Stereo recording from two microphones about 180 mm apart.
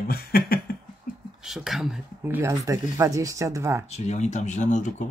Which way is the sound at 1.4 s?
Centre (ahead or behind).